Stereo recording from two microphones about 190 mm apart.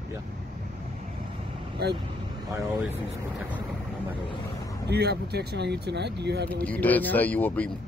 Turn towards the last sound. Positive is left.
turn(degrees=10)  # may be behind; listen again after turning